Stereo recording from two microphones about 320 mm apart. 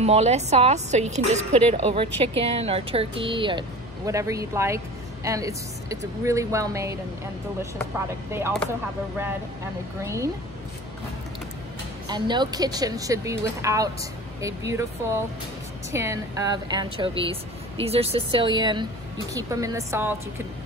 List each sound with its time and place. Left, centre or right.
0.0 s a woman's voice: centre
8.3 s speech: centre
10.0 s speech: centre
12.1 s speech: centre